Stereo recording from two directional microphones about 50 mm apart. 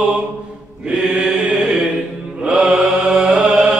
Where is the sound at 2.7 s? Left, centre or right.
Centre.